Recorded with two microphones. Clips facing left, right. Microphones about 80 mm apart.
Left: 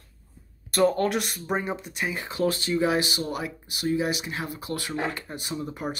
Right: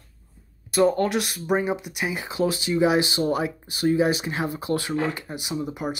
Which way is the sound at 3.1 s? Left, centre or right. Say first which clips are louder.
Right 7 dB; right.